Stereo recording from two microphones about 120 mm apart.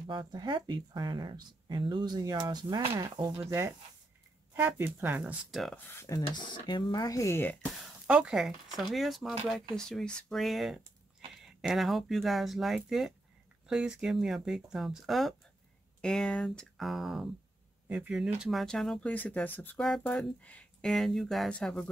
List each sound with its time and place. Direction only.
0.0 s speech: 40° right (ahead or behind)
3.4 s speech: 25° right (ahead or behind)
5.5 s speech: centre (ahead or behind)
5.9 s speech: 20° left (ahead or behind)
6.2 s speech: 40° left (ahead or behind); by 7.7 s 15° left (ahead or behind)
8.1 s speech: 5° right (ahead or behind); by 21.8 s 10° left (ahead or behind)